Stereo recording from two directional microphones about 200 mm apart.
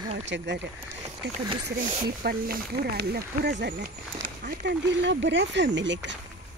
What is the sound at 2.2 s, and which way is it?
Speech, 50° right (ahead or behind).